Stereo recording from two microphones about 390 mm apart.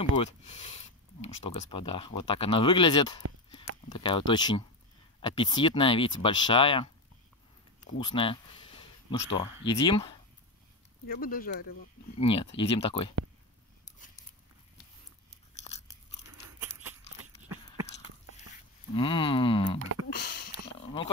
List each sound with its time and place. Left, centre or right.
0.1 s speech: centre
8.0 s speech: centre
11.1 s speech: left
18.9 s speech: centre
20.1 s a sound: left